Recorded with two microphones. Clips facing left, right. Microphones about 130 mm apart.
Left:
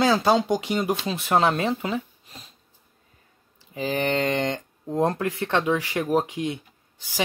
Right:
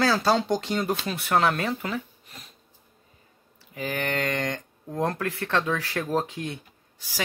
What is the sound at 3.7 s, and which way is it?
Speech, 25° left (ahead or behind).